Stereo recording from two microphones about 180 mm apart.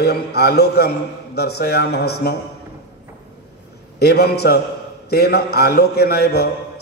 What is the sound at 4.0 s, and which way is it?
A man's voice, 65° left (ahead or behind).